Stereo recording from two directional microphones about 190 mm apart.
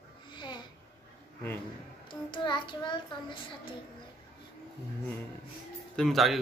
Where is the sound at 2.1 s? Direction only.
25° left (ahead or behind).